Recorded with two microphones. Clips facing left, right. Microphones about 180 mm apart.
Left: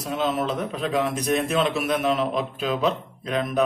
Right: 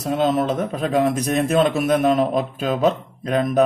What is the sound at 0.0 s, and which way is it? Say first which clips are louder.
Speech: right 5 dB; 40° right (ahead or behind).